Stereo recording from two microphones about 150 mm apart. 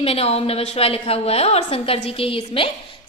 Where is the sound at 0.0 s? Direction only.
40° left (ahead or behind).